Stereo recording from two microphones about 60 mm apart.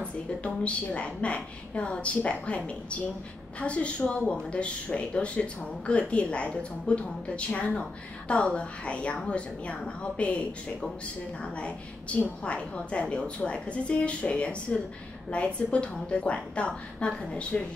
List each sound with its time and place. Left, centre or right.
0.0 s speech: left
11.4 s speech: centre